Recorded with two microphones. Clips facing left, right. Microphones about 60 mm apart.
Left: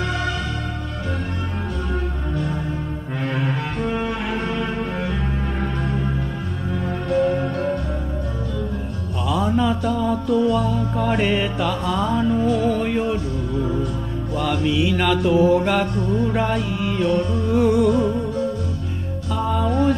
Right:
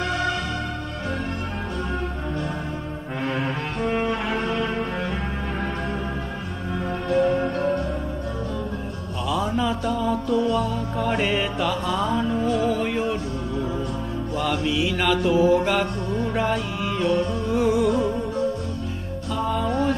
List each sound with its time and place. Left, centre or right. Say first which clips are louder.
4.1 s cello: even; right
9.3 s music: left 4 dB; centre
14.3 s mantra: left 3 dB; centre
17.5 s music: left 4 dB; centre
19.3 s music: left 2 dB; centre